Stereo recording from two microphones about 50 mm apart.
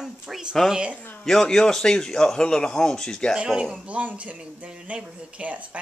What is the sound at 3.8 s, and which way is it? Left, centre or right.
Speech, right.